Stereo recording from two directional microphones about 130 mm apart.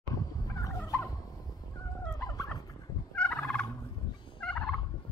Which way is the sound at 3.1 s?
10° left (ahead or behind).